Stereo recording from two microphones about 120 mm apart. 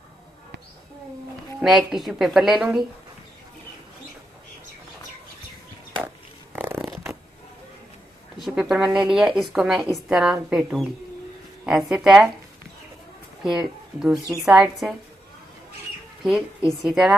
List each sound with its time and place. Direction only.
1.6 s a woman's voice: 5° right (ahead or behind)
6.5 s a sound: 15° right (ahead or behind)
8.4 s a woman's voice: 5° right (ahead or behind)
13.4 s a woman's voice: 5° right (ahead or behind)
16.2 s a woman's voice: centre (ahead or behind)